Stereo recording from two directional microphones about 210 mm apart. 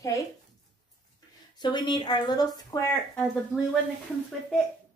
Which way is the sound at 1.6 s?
20° left (ahead or behind).